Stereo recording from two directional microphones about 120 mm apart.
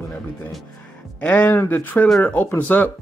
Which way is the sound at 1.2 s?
15° left (ahead or behind).